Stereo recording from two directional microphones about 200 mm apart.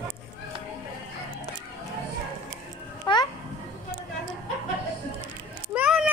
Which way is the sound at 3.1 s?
25° left (ahead or behind).